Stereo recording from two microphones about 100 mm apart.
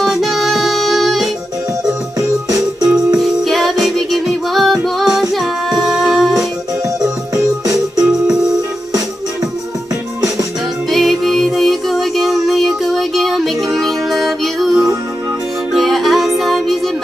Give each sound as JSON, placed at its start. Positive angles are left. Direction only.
{"t": 0.0, "sound": "music", "side_deg": 0}
{"t": 2.1, "sound": "music", "side_deg": -35}
{"t": 3.2, "sound": "music", "side_deg": 0}
{"t": 7.0, "sound": "music", "side_deg": -35}
{"t": 8.0, "sound": "music", "side_deg": -5}
{"t": 10.9, "sound": "music", "side_deg": 0}